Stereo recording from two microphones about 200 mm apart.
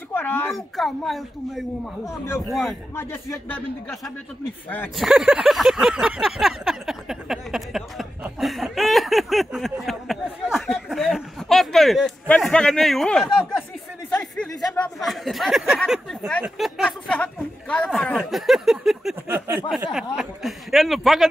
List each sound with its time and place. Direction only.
0.1 s speech: 10° left (ahead or behind)
3.0 s speech: 10° left (ahead or behind)
5.0 s a sound: 5° right (ahead or behind)
19.7 s speech: centre (ahead or behind)